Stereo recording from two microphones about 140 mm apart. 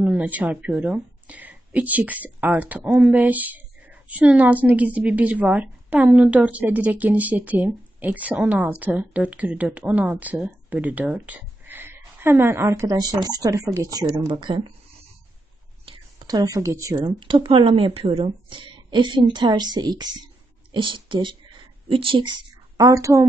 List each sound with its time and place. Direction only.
0.0 s speech: 10° right (ahead or behind); by 14.7 s 35° right (ahead or behind)
15.8 s a woman's voice: 30° right (ahead or behind)